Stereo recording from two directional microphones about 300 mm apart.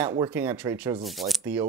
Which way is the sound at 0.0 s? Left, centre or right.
Centre.